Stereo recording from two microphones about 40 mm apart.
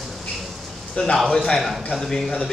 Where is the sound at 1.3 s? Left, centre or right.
Centre.